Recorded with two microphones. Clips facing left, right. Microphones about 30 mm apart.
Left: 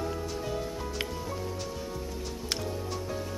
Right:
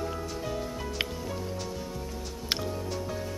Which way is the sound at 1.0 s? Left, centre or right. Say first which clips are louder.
Right 4 dB; right.